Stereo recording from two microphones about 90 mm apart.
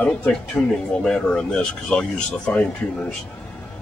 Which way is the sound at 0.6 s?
10° left (ahead or behind).